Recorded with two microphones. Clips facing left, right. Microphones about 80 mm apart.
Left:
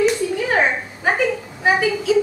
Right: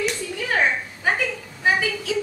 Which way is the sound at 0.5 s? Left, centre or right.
Centre.